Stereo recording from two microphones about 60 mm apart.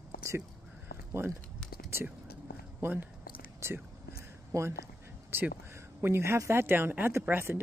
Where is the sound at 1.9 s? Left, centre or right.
Right.